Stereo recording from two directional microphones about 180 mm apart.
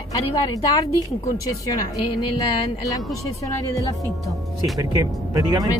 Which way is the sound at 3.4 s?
20° left (ahead or behind).